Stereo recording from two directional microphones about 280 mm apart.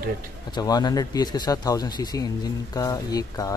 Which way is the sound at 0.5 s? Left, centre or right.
Centre.